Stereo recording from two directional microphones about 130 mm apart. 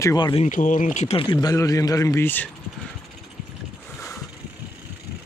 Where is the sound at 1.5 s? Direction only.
25° left (ahead or behind).